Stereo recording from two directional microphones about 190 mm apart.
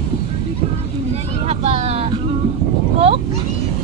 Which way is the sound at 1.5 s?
35° right (ahead or behind).